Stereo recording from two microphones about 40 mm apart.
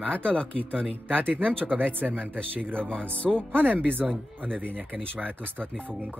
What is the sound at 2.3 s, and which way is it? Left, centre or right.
Speech, right.